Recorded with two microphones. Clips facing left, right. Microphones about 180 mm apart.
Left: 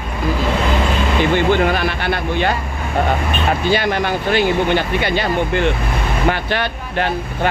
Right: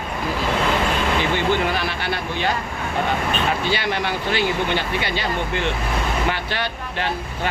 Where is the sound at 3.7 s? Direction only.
45° left (ahead or behind).